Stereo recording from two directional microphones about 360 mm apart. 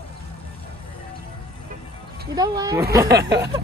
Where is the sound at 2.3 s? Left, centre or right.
Centre.